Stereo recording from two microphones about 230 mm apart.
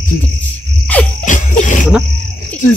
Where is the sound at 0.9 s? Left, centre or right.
Centre.